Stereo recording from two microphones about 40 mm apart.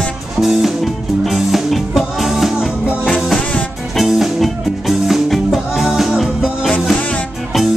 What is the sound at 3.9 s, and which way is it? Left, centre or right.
Music, centre.